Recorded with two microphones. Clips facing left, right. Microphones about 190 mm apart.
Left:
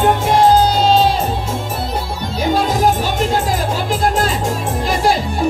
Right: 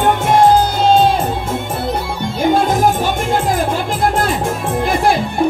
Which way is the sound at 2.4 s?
50° right (ahead or behind).